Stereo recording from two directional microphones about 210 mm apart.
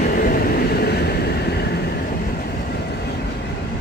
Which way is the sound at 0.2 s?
45° left (ahead or behind).